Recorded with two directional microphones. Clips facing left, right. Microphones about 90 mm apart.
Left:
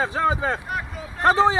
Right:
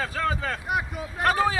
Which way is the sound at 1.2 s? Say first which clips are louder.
Left 5 dB; 25° left (ahead or behind).